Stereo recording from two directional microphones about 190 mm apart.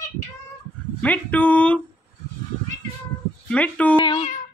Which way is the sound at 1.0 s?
10° left (ahead or behind).